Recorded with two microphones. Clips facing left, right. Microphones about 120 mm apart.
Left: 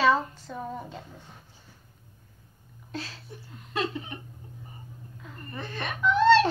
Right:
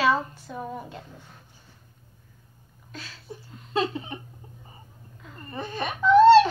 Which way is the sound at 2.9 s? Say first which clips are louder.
Left 6 dB; 35° left (ahead or behind).